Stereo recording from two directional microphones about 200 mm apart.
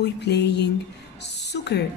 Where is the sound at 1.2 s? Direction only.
60° left (ahead or behind).